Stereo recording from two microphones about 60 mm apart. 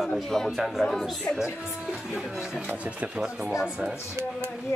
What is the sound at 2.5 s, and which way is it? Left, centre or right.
Speech, right.